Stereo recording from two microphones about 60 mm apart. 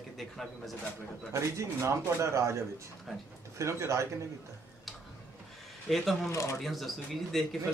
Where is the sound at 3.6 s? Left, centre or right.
Right.